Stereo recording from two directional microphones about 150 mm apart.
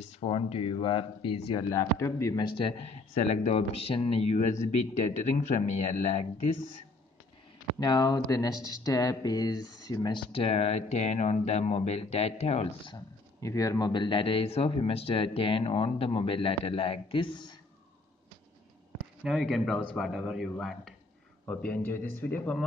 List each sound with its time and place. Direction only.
0.2 s speech: 40° left (ahead or behind)
1.7 s a man's voice: 20° left (ahead or behind)
2.5 s speech: 40° left (ahead or behind)
7.8 s speech: 25° left (ahead or behind); by 12.9 s 45° left (ahead or behind)
12.9 s speech: 20° left (ahead or behind)
19.2 s a man's voice: centre (ahead or behind)